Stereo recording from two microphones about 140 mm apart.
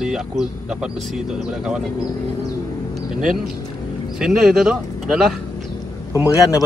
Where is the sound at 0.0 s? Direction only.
5° right (ahead or behind).